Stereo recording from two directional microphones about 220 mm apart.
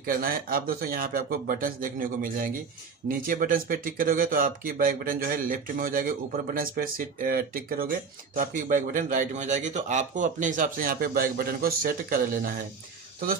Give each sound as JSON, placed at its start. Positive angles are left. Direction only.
{"t": 0.0, "sound": "speech", "side_deg": -40}